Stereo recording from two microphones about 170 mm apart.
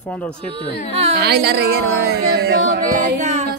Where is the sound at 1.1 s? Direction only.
70° right (ahead or behind); by 3.4 s 45° right (ahead or behind).